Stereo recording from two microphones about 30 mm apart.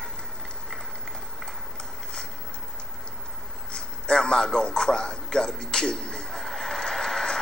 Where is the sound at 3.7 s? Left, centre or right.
Left.